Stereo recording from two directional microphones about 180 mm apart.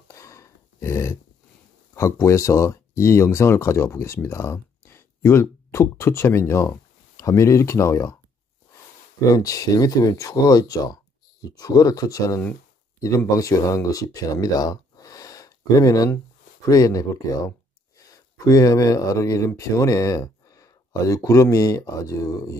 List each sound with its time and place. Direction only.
0.1 s a sound: 15° left (ahead or behind)
2.0 s speech: 15° left (ahead or behind)
9.3 s speech: 20° left (ahead or behind)